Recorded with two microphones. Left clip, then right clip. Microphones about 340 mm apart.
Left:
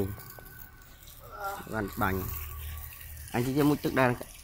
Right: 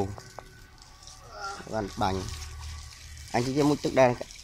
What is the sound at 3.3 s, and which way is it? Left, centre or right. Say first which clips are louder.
Speech: right 2 dB; centre.